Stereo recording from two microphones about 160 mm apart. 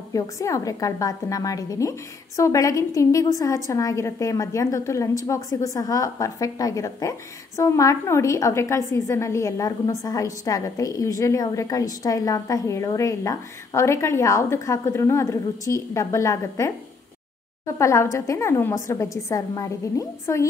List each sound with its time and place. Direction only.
0.1 s a woman's voice: 20° left (ahead or behind)
17.7 s a woman's voice: 20° left (ahead or behind)